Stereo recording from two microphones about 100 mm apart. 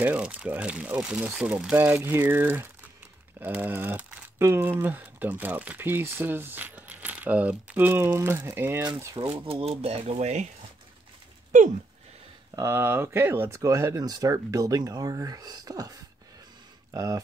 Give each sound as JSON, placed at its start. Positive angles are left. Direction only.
{"t": 0.0, "sound": "speech", "side_deg": -15}
{"t": 9.1, "sound": "speech", "side_deg": -70}
{"t": 12.5, "sound": "speech", "side_deg": -25}